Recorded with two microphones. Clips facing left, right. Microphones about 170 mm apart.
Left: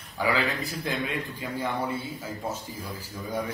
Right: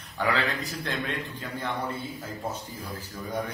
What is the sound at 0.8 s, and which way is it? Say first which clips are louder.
Speech: left 3 dB; 10° left (ahead or behind).